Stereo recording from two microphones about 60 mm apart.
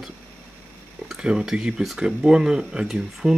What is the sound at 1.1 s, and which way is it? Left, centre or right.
Speech, centre.